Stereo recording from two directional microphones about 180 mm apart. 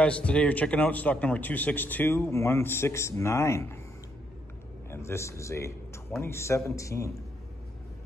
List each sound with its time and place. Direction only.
0.0 s a man's voice: 5° left (ahead or behind)
4.9 s speech: 15° left (ahead or behind)